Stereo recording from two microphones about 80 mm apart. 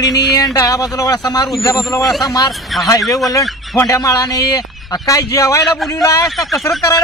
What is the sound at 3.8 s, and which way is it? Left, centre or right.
A man's voice, left.